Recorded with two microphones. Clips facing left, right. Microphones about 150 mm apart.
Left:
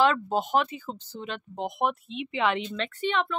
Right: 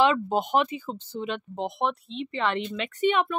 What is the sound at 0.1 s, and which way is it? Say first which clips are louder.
Speech: right 1 dB; 10° right (ahead or behind).